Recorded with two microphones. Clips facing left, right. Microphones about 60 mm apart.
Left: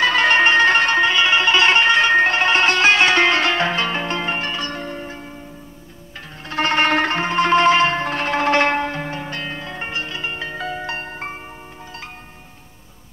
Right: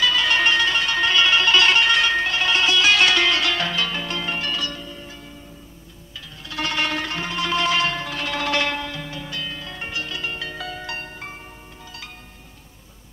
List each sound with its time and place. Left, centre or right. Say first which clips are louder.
0.0 s music: left 5 dB; left
0.9 s music: left 3 dB; left
4.7 s church bell: left 7 dB; left
6.1 s zither: left 6 dB; left